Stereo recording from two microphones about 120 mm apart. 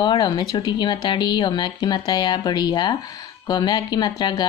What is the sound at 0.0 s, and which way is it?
Speech, 40° left (ahead or behind).